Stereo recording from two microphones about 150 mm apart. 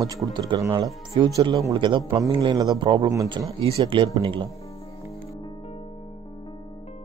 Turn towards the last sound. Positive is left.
turn(degrees=40)  # may be behind; listen again after turning